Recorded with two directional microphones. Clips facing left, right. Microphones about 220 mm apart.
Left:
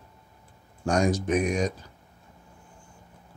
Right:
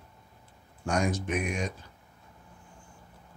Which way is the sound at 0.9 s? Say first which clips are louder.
Left 5 dB; 35° left (ahead or behind).